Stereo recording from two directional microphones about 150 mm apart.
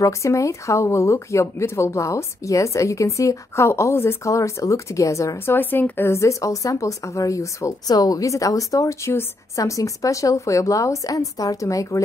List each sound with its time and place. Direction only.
0.0 s speech: 20° left (ahead or behind)